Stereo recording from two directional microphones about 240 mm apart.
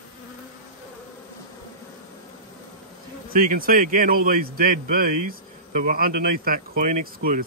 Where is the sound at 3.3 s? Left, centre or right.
Right.